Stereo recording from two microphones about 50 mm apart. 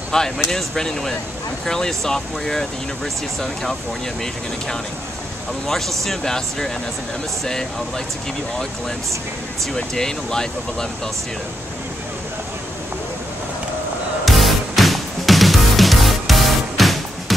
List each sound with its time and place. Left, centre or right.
0.1 s speech: centre
5.7 s speech: centre
9.8 s speech: centre
14.2 s music: centre